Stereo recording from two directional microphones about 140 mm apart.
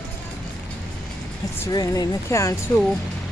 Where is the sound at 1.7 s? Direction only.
25° left (ahead or behind).